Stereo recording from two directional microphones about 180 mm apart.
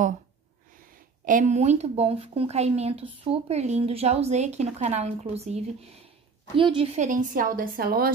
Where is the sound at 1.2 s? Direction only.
45° right (ahead or behind).